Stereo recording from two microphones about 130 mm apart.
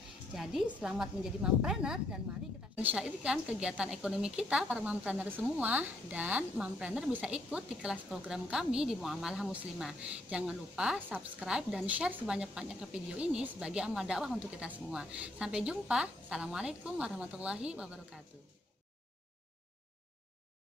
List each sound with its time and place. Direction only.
0.3 s a woman's voice: 5° right (ahead or behind)